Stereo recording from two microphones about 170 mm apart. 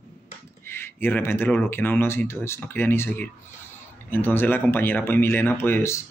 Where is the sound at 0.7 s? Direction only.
15° left (ahead or behind).